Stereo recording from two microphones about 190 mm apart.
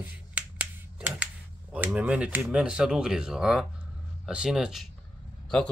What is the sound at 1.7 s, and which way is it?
Typing, 5° right (ahead or behind).